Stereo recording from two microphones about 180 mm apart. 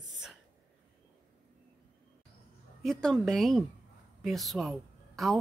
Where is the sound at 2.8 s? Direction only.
5° left (ahead or behind).